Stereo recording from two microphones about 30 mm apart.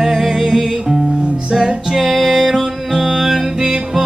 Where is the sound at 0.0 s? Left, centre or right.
Centre.